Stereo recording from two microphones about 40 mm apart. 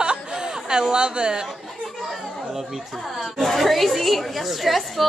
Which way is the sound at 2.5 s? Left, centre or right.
Centre.